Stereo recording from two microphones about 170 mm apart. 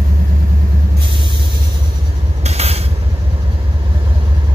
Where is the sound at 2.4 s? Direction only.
40° right (ahead or behind).